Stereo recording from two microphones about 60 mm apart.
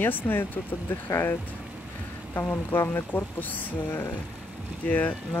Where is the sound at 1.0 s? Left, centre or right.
Left.